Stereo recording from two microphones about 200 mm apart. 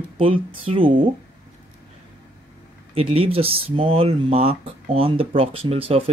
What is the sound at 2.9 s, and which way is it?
Speech, 30° right (ahead or behind).